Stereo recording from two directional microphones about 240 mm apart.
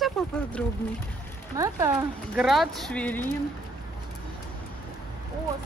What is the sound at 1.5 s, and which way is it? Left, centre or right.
Speech, centre.